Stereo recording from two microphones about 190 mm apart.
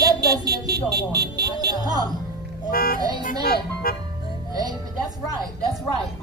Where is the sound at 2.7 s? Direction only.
50° left (ahead or behind).